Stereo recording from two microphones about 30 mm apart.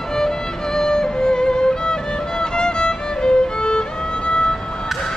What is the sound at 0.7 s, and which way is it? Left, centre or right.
Music, left.